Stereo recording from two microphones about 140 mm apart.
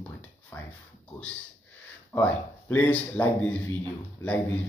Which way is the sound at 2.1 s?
15° left (ahead or behind).